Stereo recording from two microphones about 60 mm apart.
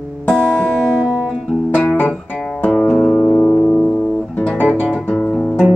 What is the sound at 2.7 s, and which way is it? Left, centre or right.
Music, centre.